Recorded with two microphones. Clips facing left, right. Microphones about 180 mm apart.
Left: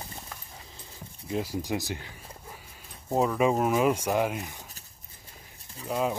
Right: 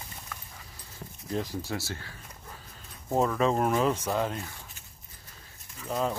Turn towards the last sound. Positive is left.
turn(degrees=5)  # may be behind; listen again after turning